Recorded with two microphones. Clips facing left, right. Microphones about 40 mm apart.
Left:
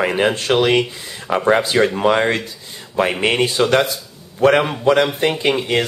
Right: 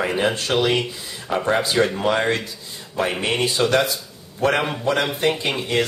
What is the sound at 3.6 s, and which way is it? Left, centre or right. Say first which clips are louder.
Speech: left 4 dB; left.